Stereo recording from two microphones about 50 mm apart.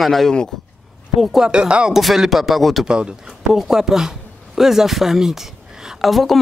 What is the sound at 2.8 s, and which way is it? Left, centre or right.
Speech, centre.